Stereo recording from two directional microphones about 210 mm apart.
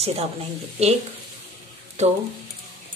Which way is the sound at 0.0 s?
30° right (ahead or behind).